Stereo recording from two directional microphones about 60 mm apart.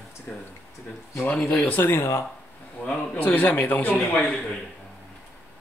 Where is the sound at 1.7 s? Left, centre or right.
Left.